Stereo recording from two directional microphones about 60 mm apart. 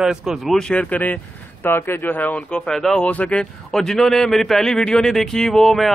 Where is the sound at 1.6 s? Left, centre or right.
Left.